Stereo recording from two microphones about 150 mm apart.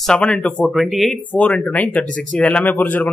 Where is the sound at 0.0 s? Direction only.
5° left (ahead or behind).